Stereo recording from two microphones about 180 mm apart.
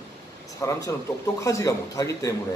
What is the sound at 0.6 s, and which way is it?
A man's voice, 15° left (ahead or behind).